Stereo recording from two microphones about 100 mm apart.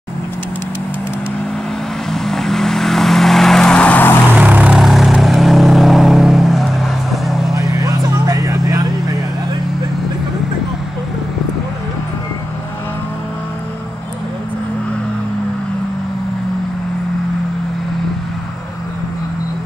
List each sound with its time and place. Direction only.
2.0 s vehicle: 5° left (ahead or behind)
4.3 s vehicle: 15° right (ahead or behind)
4.7 s vehicle: centre (ahead or behind)
7.5 s vehicle: 35° right (ahead or behind)